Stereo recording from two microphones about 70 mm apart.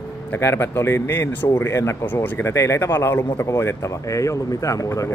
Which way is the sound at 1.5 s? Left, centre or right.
Left.